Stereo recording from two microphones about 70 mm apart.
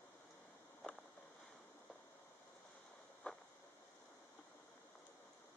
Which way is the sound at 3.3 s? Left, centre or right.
Centre.